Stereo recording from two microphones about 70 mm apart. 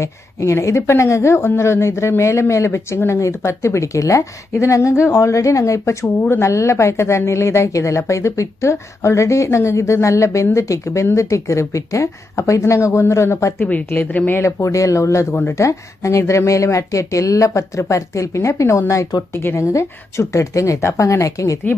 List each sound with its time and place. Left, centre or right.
0.0 s a woman's voice: left
13.6 s speech: left
14.4 s a woman's voice: left